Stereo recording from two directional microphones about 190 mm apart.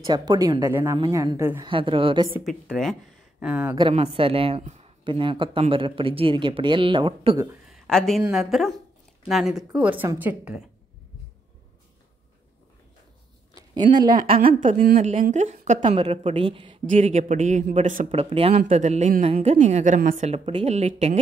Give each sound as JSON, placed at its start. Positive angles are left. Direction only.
{"t": 0.0, "sound": "speech", "side_deg": -25}
{"t": 1.7, "sound": "speech", "side_deg": -25}
{"t": 2.4, "sound": "speech", "side_deg": 0}
{"t": 3.9, "sound": "speech", "side_deg": -30}
{"t": 7.7, "sound": "a sound", "side_deg": 0}
{"t": 8.3, "sound": "a woman's voice", "side_deg": 0}
{"t": 13.6, "sound": "speech", "side_deg": -25}
{"t": 14.4, "sound": "a man's voice", "side_deg": -45}